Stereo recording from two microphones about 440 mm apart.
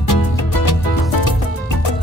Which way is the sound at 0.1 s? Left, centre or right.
Left.